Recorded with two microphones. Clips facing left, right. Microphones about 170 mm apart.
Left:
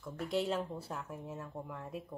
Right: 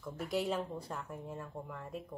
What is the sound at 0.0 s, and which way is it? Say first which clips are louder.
A woman's voice: left 1 dB; centre (ahead or behind).